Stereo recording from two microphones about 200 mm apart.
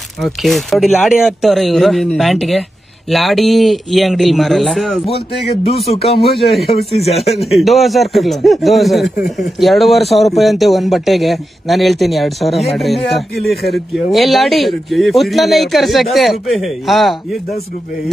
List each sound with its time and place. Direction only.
0.2 s speech: centre (ahead or behind)
5.7 s speech: 30° left (ahead or behind)
6.3 s speech: centre (ahead or behind)